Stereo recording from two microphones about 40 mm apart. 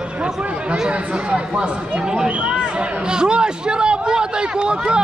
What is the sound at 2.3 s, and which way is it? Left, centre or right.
Speech, right.